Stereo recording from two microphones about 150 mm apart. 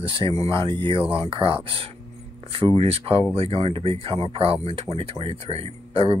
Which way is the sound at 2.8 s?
40° right (ahead or behind).